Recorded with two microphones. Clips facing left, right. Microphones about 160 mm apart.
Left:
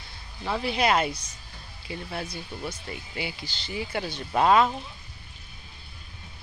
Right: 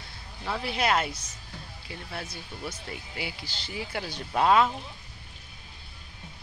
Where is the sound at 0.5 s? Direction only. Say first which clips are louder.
Left 3 dB; centre (ahead or behind).